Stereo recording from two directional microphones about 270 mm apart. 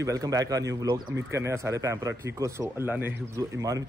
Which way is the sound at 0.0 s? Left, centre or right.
Centre.